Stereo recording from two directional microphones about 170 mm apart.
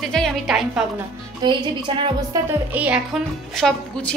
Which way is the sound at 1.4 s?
30° right (ahead or behind).